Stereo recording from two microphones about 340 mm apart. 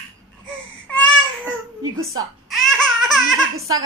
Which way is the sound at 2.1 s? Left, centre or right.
Centre.